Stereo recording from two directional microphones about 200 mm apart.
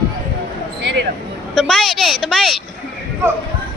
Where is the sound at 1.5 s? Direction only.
Centre (ahead or behind).